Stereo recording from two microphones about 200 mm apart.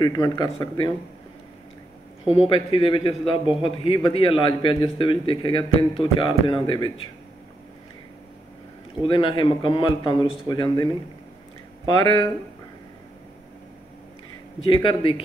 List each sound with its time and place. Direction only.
0.0 s a man's voice: 20° left (ahead or behind)
2.2 s a man's voice: 30° left (ahead or behind)
9.0 s a man's voice: 25° left (ahead or behind)
14.6 s a man's voice: 25° left (ahead or behind)